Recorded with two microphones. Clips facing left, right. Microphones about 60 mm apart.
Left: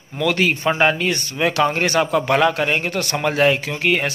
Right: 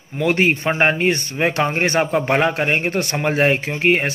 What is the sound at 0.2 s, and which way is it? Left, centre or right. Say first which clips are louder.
Speech: right 1 dB; right.